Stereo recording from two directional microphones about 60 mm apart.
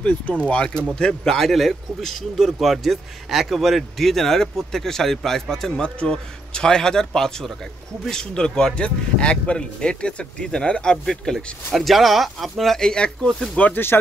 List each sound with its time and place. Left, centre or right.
0.0 s speech: left; by 12.8 s centre
12.8 s speech: centre